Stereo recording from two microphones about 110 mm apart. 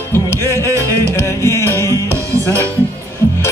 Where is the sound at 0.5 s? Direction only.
25° right (ahead or behind).